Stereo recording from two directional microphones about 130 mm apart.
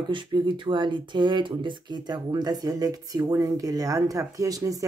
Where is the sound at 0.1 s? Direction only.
40° right (ahead or behind).